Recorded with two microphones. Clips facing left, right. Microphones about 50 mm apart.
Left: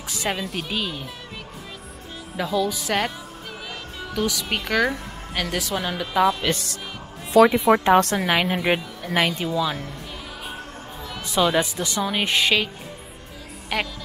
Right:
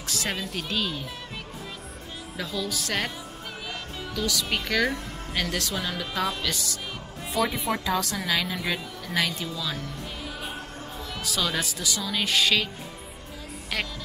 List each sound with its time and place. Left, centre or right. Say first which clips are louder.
0.0 s music: left 4 dB; centre
0.5 s speech: left 2 dB; centre
2.3 s speech: left 8 dB; centre
4.3 s speech: left 2 dB; centre
6.4 s a woman's voice: left 6 dB; left
7.3 s speech: left 12 dB; left
7.8 s a woman's voice: left 10 dB; left
11.2 s speech: left 8 dB; left
13.7 s speech: left 5 dB; centre